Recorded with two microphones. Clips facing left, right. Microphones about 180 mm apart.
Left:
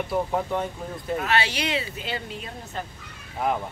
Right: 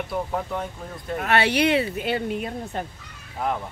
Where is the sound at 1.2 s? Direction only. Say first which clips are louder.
Right 6 dB; 60° right (ahead or behind).